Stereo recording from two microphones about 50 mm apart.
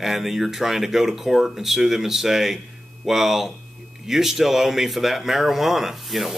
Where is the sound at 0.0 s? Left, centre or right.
Centre.